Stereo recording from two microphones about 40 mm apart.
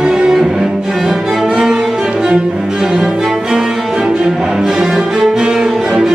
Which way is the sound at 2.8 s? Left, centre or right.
Centre.